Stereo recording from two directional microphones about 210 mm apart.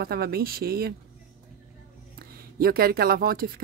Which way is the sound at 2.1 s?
45° right (ahead or behind).